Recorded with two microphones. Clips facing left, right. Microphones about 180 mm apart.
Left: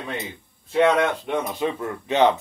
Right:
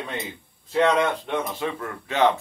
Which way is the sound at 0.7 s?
5° left (ahead or behind).